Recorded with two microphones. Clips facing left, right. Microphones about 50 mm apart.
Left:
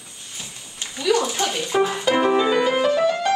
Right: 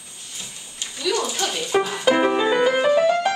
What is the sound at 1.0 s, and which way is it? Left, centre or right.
Speech, centre.